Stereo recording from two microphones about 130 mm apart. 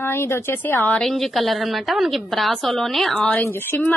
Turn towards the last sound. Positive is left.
turn(degrees=15)  # may be behind; listen again after turning